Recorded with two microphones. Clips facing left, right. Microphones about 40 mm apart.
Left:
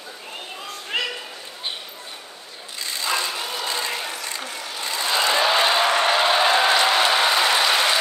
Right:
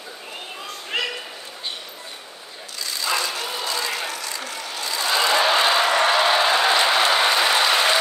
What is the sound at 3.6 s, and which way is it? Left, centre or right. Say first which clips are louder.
Vehicle: right 1 dB; left.